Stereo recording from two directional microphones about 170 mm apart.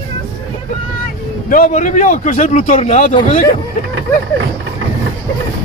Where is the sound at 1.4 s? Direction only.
50° left (ahead or behind).